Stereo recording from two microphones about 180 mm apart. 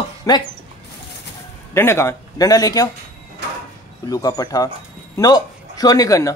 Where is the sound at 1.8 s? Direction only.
15° left (ahead or behind).